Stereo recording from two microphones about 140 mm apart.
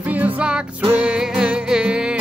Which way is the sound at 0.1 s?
10° right (ahead or behind).